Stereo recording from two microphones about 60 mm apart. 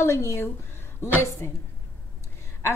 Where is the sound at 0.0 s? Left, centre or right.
Left.